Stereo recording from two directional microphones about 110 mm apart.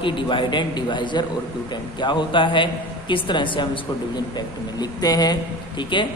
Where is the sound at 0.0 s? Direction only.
50° left (ahead or behind).